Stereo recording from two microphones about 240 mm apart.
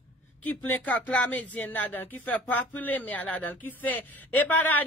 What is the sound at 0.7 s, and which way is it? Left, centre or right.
Speech, centre.